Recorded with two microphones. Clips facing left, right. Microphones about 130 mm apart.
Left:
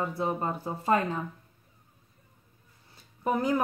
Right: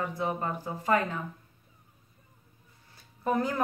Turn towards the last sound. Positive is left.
turn(degrees=15)  # may be behind; listen again after turning